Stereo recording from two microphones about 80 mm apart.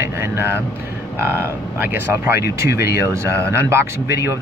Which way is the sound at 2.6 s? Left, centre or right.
Right.